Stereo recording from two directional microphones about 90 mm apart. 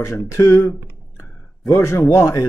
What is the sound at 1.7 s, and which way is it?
Speech, 35° left (ahead or behind).